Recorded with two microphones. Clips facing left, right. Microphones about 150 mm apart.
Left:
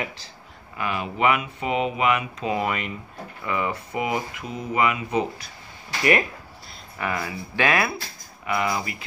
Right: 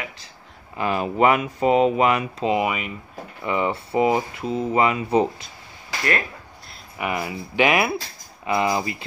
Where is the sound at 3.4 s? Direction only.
25° right (ahead or behind).